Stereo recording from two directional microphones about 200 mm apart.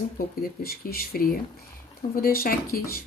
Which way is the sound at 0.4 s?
50° left (ahead or behind).